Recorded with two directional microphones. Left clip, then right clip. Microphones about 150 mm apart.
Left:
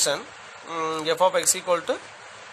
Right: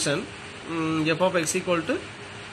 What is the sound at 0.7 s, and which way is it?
A man's voice, 90° left.